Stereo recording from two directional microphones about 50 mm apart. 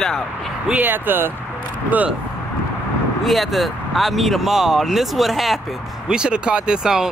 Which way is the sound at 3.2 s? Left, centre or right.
Centre.